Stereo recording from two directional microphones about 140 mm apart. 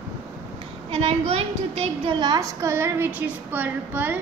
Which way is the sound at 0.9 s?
45° right (ahead or behind).